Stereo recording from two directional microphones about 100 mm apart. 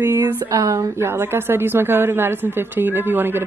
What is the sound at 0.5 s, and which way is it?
A woman's voice, 35° right (ahead or behind).